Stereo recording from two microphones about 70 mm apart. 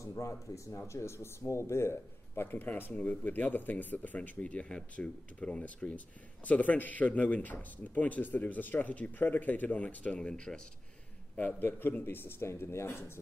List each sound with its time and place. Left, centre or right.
0.0 s speech: left
10.1 s speech: centre
11.3 s a man's voice: left